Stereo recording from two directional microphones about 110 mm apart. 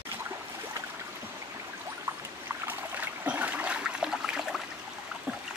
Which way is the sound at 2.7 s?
15° right (ahead or behind).